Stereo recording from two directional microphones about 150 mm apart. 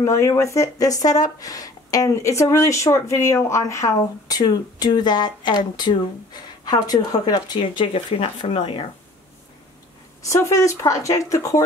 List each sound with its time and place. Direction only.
0.0 s a woman's voice: 20° left (ahead or behind)
10.2 s a woman's voice: 20° left (ahead or behind)